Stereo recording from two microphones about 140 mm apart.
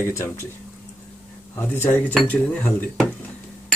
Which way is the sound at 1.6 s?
15° left (ahead or behind).